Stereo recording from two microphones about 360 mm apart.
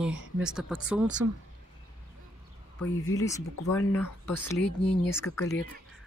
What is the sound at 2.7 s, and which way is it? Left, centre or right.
Speech, left.